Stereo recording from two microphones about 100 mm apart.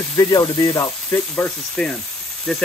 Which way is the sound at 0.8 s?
20° left (ahead or behind).